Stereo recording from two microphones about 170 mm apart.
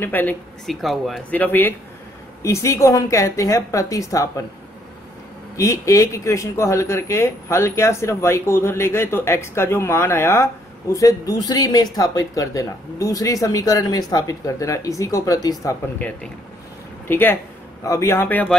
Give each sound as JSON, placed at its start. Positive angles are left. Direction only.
{"t": 0.0, "sound": "speech", "side_deg": 10}
{"t": 5.6, "sound": "speech", "side_deg": 20}
{"t": 16.0, "sound": "speech", "side_deg": 10}